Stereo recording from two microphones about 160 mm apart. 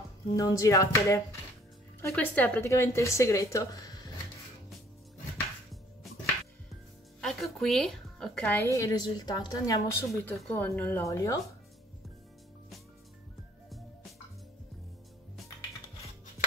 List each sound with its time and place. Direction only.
0.3 s a woman's voice: 20° left (ahead or behind)
7.2 s a woman's voice: centre (ahead or behind); by 10.2 s 25° left (ahead or behind)
10.3 s a woman's voice: 10° left (ahead or behind)